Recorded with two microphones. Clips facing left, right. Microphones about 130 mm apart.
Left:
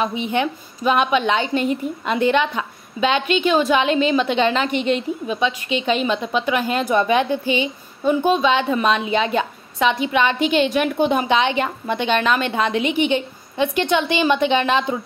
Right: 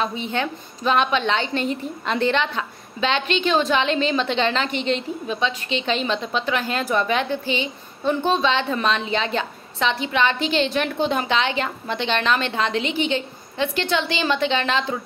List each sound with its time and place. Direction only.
0.0 s a woman's voice: 15° left (ahead or behind)